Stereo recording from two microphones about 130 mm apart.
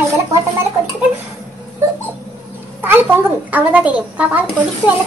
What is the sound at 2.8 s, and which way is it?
A child's voice, 15° right (ahead or behind).